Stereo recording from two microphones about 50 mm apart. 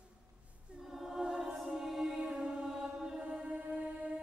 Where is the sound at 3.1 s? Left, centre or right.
Right.